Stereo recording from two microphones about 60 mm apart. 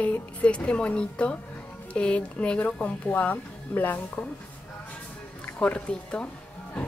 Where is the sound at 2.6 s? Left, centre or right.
Left.